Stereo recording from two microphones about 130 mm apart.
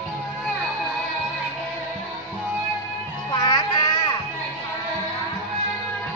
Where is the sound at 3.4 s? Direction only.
30° left (ahead or behind).